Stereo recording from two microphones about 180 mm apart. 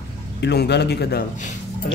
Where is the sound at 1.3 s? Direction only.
45° left (ahead or behind).